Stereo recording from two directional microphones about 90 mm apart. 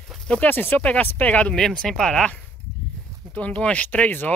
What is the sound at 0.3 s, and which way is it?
Speech, 20° left (ahead or behind).